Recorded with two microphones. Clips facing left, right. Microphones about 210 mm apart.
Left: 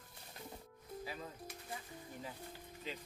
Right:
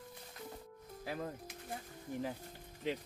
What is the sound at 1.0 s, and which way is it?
Speech, 55° right (ahead or behind).